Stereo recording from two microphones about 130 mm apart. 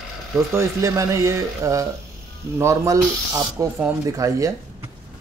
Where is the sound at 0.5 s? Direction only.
25° right (ahead or behind).